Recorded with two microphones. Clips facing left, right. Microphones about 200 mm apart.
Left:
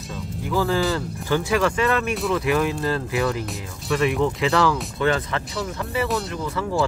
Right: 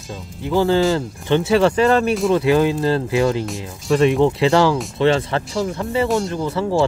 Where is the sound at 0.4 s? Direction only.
30° right (ahead or behind).